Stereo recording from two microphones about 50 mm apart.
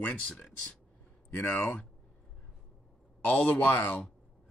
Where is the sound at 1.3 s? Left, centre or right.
Left.